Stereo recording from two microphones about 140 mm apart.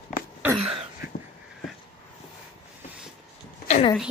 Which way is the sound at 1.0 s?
90° left.